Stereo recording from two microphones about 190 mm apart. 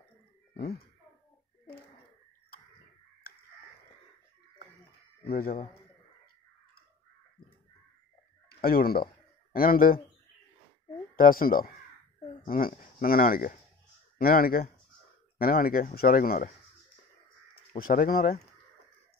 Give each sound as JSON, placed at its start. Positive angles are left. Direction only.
{"t": 5.3, "sound": "speech", "side_deg": 50}
{"t": 8.5, "sound": "a sound", "side_deg": 50}
{"t": 11.1, "sound": "speech", "side_deg": 50}
{"t": 17.7, "sound": "speech", "side_deg": 50}